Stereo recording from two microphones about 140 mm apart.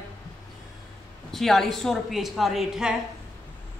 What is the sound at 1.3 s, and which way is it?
A woman's voice, centre (ahead or behind).